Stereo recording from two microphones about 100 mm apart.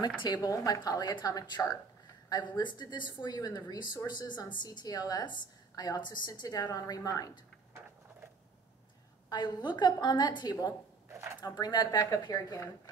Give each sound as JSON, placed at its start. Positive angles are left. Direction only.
{"t": 0.2, "sound": "a woman's voice", "side_deg": 40}
{"t": 9.3, "sound": "a woman's voice", "side_deg": 45}
{"t": 11.1, "sound": "a sound", "side_deg": -30}
{"t": 11.4, "sound": "a woman's voice", "side_deg": 45}